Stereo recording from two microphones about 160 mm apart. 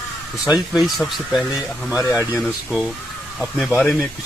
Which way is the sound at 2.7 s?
5° right (ahead or behind).